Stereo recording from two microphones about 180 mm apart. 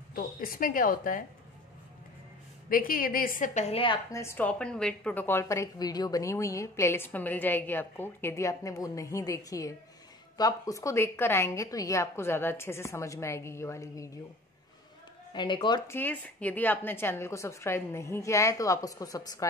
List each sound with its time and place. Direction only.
0.1 s a woman's voice: 55° left (ahead or behind)
2.7 s a woman's voice: 50° left (ahead or behind); by 4.0 s 30° left (ahead or behind)
4.1 s a woman's voice: 15° left (ahead or behind)
15.3 s speech: 25° left (ahead or behind)
15.9 s a woman's voice: 10° left (ahead or behind)